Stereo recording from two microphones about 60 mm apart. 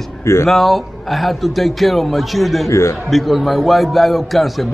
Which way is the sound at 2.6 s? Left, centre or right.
Left.